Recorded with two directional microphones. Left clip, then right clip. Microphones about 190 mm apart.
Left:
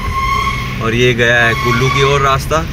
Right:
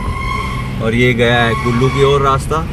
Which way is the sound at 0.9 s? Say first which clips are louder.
Left 1 dB; centre (ahead or behind).